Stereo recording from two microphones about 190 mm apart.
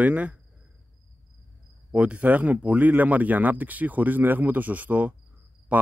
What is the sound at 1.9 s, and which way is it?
Cricket, 5° right (ahead or behind).